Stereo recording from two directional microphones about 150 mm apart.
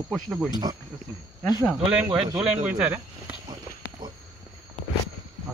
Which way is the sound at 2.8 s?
10° right (ahead or behind).